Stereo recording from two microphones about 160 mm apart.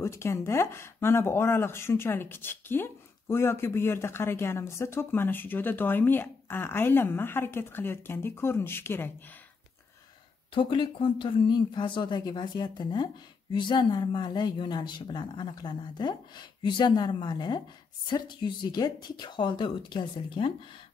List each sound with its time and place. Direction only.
0.0 s speech: 15° left (ahead or behind)
10.5 s speech: 30° left (ahead or behind)